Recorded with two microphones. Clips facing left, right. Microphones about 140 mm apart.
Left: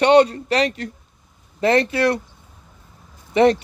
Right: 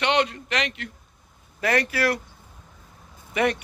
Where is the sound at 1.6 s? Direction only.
25° left (ahead or behind).